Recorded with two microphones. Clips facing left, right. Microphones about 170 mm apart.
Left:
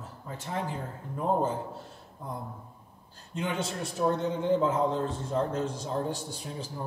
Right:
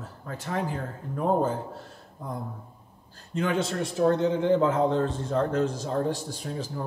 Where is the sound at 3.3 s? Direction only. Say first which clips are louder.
Right 6 dB; 70° right (ahead or behind).